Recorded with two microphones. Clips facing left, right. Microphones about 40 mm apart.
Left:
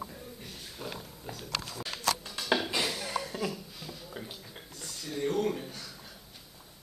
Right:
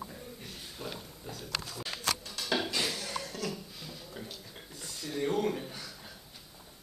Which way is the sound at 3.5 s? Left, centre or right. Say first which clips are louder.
Left 1 dB; centre.